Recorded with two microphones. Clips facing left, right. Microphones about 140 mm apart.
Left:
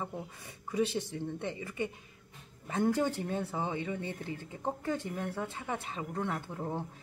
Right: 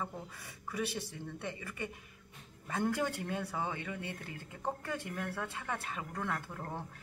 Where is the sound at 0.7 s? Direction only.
20° left (ahead or behind).